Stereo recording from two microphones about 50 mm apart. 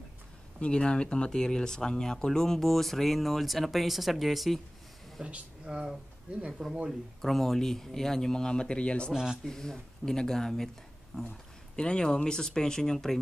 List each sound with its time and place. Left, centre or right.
0.6 s speech: centre
5.2 s speech: right
6.9 s speech: centre; by 9.1 s left
9.1 s speech: centre
9.5 s speech: centre
11.1 s speech: left
11.7 s speech: centre